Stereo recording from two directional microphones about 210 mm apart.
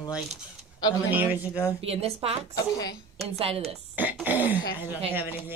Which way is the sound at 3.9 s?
10° right (ahead or behind).